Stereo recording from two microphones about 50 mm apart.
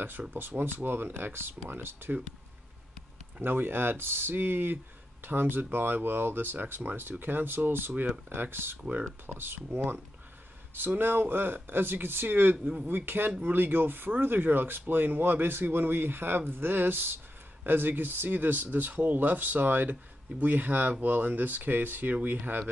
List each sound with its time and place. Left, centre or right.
0.3 s speech: right
3.4 s speech: right